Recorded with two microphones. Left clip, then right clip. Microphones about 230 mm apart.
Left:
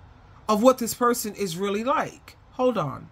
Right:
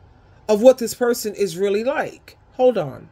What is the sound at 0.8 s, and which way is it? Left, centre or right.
Speech, centre.